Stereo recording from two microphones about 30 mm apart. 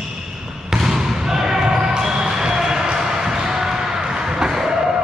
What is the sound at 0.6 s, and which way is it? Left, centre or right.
Basketball bounce, centre.